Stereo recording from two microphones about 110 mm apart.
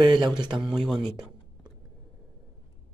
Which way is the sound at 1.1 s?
40° right (ahead or behind).